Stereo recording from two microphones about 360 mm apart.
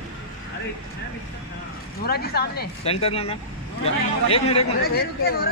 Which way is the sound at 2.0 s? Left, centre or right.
Left.